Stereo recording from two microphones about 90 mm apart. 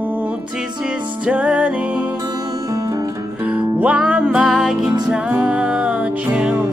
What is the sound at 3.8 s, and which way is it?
Music, 15° right (ahead or behind).